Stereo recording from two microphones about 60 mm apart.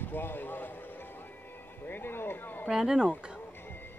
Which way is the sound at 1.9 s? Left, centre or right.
Left.